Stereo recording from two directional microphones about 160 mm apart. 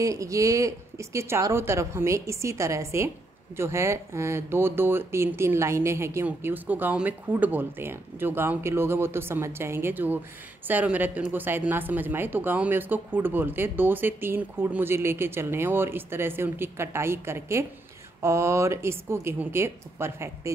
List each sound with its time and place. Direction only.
0.0 s speech: 20° right (ahead or behind)